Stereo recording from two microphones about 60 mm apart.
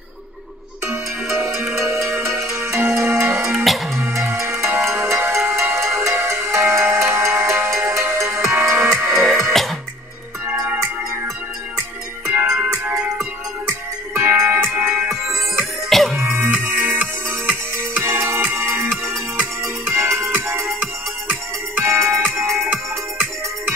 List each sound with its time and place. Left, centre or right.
0.8 s music: right
3.5 s music: centre
3.9 s music: right
9.1 s music: centre
13.7 s music: right
14.6 s music: right
15.0 s music: centre
16.2 s music: right
19.9 s music: right
21.8 s music: right